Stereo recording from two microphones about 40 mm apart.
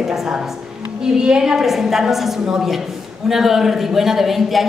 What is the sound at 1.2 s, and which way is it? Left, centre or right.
A woman's voice, centre.